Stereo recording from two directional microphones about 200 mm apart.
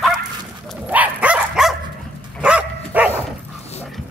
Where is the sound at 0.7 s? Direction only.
5° right (ahead or behind).